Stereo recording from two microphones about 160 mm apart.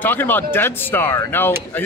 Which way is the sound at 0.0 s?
10° left (ahead or behind).